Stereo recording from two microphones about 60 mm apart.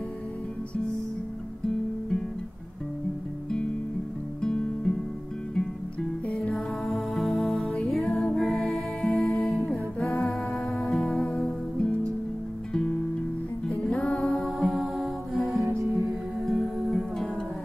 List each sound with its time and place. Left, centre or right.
4.4 s music: centre
6.2 s music: centre
6.9 s music: centre
8.4 s music: centre
11.2 s music: centre
13.7 s music: centre
14.2 s music: centre